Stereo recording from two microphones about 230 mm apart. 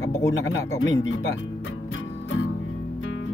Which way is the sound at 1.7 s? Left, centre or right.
Left.